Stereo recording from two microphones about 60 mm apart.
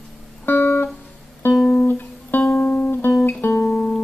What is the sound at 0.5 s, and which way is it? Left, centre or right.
Music, left.